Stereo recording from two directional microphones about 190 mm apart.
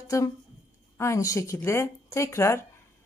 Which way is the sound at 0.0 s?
15° left (ahead or behind).